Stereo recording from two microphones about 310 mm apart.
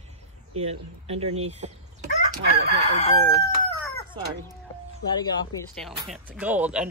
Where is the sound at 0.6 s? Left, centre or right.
Centre.